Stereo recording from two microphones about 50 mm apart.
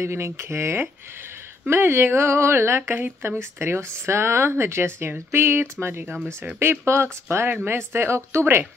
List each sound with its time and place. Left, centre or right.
0.0 s a woman's voice: right